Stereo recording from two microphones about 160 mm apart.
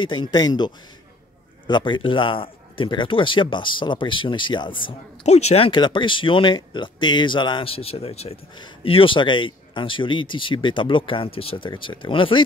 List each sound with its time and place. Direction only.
0.0 s speech: 30° left (ahead or behind)
5.2 s speech: 45° left (ahead or behind)